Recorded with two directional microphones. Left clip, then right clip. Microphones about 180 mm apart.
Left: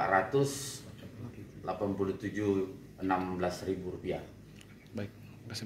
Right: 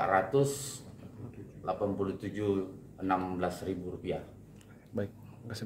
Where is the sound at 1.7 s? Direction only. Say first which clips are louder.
Right 1 dB; 20° right (ahead or behind).